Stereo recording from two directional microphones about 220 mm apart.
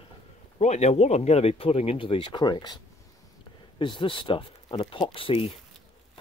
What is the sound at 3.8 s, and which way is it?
Speech, 20° left (ahead or behind).